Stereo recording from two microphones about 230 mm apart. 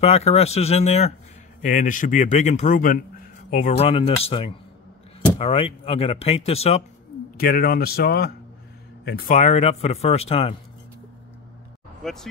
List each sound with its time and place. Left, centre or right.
0.0 s a man's voice: left
7.3 s a man's voice: left
12.0 s speech: centre